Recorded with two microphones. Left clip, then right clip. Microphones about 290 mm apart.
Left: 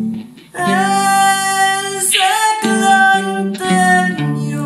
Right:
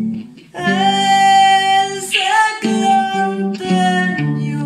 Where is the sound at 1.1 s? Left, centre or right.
Centre.